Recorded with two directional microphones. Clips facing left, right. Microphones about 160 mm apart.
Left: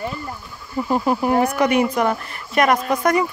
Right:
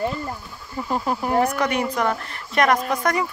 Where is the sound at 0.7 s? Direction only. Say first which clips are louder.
Left 5 dB; 10° left (ahead or behind).